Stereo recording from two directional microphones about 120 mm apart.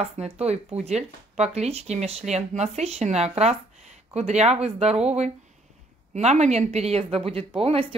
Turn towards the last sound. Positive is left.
turn(degrees=-50)  # may be behind; listen again after turning